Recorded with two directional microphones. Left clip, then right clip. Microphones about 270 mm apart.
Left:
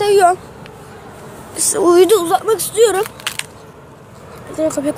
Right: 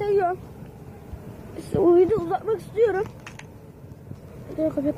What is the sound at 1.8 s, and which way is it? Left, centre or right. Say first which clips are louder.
Speech: left 8 dB; left.